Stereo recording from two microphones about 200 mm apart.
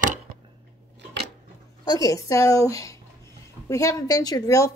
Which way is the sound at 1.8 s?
15° left (ahead or behind).